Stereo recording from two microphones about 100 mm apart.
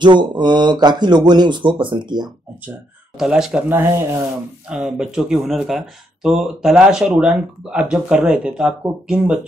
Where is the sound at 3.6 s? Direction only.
20° right (ahead or behind).